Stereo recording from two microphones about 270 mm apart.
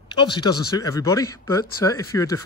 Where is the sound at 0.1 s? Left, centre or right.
Centre.